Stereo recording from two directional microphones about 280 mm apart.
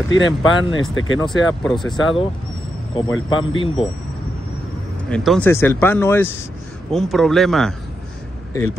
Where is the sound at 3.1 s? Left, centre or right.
Left.